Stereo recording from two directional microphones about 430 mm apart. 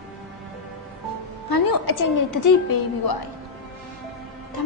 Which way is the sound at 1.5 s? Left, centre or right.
Left.